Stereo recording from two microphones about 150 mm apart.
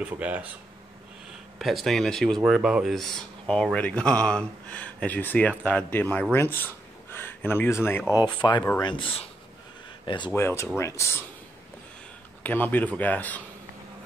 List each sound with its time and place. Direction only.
0.0 s speech: 10° right (ahead or behind)
1.6 s speech: centre (ahead or behind)
6.3 s a sound: 15° left (ahead or behind)
8.3 s speech: 30° left (ahead or behind)
10.3 s speech: 15° left (ahead or behind)
12.4 s speech: 10° left (ahead or behind)